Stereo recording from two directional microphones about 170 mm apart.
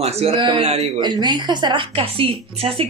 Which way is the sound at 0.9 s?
25° right (ahead or behind).